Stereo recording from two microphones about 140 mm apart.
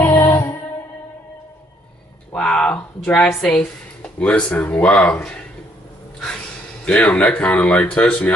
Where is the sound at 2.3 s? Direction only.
5° left (ahead or behind).